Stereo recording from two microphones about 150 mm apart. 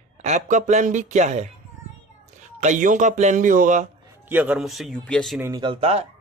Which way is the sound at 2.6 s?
55° right (ahead or behind).